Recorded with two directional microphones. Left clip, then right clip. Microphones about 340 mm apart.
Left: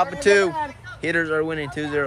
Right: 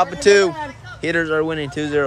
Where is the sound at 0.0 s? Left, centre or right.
Centre.